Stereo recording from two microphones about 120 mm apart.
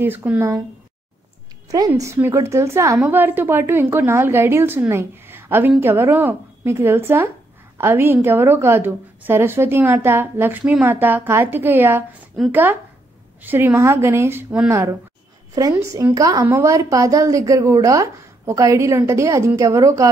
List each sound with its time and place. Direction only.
0.0 s a woman's voice: 15° right (ahead or behind)
1.7 s a woman's voice: 25° right (ahead or behind)